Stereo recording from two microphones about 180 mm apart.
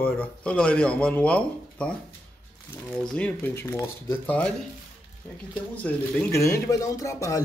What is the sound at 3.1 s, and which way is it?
Speech, 10° left (ahead or behind).